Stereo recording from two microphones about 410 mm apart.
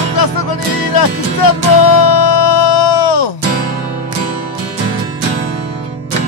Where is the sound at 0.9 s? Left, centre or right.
Left.